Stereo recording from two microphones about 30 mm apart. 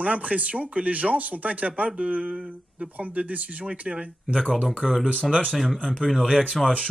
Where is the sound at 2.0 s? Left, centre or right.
Right.